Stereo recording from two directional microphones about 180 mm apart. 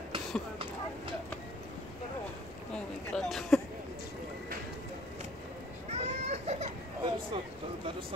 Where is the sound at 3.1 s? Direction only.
Centre (ahead or behind).